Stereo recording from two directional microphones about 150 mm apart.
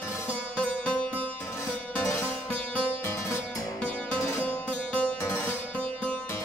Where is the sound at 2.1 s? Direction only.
15° left (ahead or behind).